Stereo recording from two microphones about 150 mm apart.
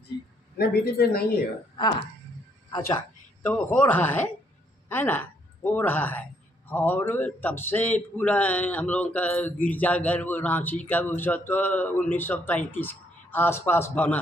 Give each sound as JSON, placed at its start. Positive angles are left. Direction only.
{"t": 0.6, "sound": "a woman's voice", "side_deg": 90}
{"t": 3.4, "sound": "a man's voice", "side_deg": 10}